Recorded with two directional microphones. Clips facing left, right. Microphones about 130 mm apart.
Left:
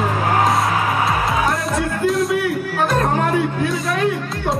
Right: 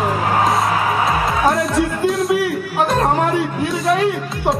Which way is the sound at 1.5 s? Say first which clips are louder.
Right 4 dB; centre (ahead or behind).